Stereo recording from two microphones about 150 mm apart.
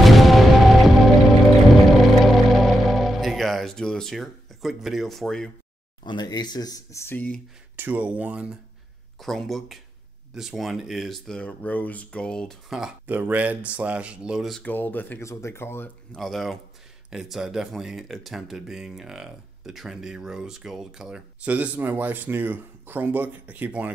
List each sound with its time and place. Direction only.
0.0 s music: centre (ahead or behind)
6.0 s speech: 30° left (ahead or behind); by 7.4 s 10° left (ahead or behind)
7.7 s speech: 15° right (ahead or behind)
14.6 s speech: 10° left (ahead or behind)
16.2 s speech: centre (ahead or behind)